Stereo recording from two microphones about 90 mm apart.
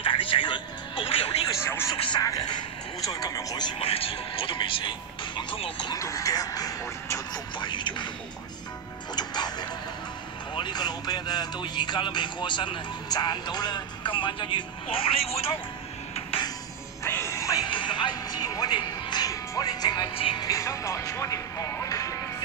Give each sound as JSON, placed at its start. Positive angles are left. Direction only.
{"t": 0.0, "sound": "music", "side_deg": 75}
{"t": 1.6, "sound": "speech", "side_deg": 30}
{"t": 2.1, "sound": "speech", "side_deg": 45}
{"t": 3.8, "sound": "speech", "side_deg": 90}
{"t": 5.9, "sound": "speech", "side_deg": 35}
{"t": 7.5, "sound": "speech", "side_deg": 60}
{"t": 9.1, "sound": "music", "side_deg": 50}
{"t": 10.5, "sound": "speech", "side_deg": 55}
{"t": 17.0, "sound": "music", "side_deg": 30}
{"t": 17.6, "sound": "music", "side_deg": 65}
{"t": 20.2, "sound": "speech", "side_deg": 70}
{"t": 20.4, "sound": "speech", "side_deg": 35}